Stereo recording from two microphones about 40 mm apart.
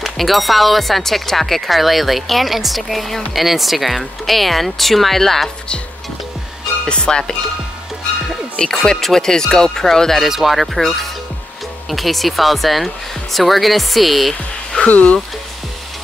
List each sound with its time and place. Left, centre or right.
0.0 s speech: centre
6.9 s music: left
8.7 s speech: centre
10.2 s speech: centre
11.9 s speech: centre
14.9 s speech: left